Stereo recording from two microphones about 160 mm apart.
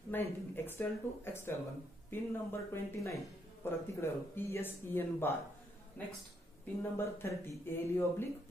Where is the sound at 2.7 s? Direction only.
20° left (ahead or behind).